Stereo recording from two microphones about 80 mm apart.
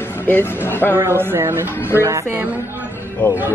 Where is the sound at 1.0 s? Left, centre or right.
Right.